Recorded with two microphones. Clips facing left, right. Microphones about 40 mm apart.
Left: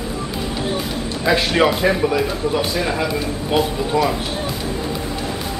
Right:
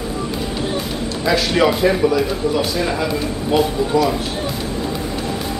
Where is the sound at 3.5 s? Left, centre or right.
Centre.